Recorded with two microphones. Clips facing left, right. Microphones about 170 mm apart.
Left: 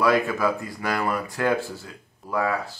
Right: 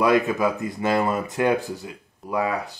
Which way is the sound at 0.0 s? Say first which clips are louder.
Right 2 dB; 20° right (ahead or behind).